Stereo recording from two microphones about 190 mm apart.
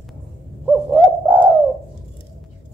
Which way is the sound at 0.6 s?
10° right (ahead or behind).